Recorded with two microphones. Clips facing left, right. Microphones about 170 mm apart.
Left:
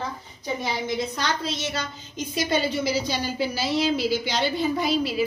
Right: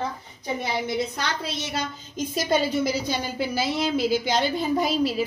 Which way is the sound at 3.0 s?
50° right (ahead or behind).